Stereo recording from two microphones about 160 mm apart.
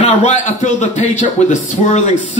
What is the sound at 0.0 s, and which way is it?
A man's voice, 50° left (ahead or behind).